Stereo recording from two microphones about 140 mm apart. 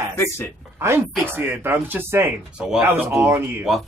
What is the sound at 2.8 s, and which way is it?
Speech, 15° right (ahead or behind).